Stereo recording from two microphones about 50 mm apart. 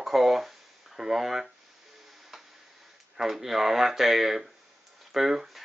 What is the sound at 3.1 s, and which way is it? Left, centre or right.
Speech, centre.